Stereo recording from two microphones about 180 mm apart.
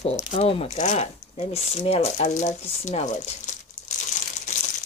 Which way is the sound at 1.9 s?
35° left (ahead or behind).